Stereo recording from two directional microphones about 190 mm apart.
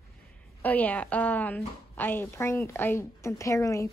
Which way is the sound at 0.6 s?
10° left (ahead or behind).